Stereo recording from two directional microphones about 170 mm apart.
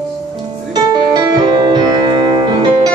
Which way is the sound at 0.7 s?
25° right (ahead or behind).